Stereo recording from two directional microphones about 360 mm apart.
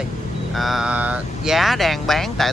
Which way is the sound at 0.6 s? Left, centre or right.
Centre.